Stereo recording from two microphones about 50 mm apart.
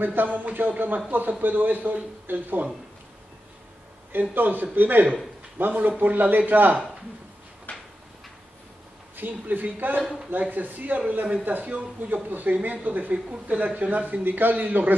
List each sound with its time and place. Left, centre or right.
0.0 s speech: right
4.1 s speech: right
7.7 s a sound: left
9.1 s speech: right
13.3 s speech: right